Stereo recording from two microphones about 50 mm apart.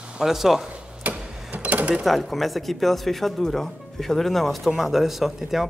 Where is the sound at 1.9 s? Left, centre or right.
Centre.